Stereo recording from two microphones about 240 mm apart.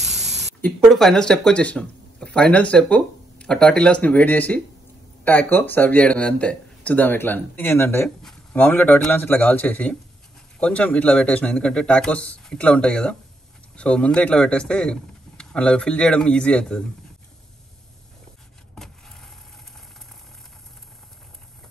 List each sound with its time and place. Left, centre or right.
0.0 s spray: centre
0.6 s speech: centre
18.8 s vehicle: centre